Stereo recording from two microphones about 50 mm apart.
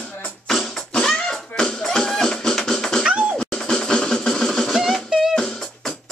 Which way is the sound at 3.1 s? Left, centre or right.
Right.